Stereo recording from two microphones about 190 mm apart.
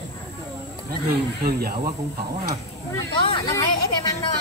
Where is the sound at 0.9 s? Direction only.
55° right (ahead or behind).